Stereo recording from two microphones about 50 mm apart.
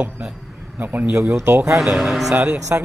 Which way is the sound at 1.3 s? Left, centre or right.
Right.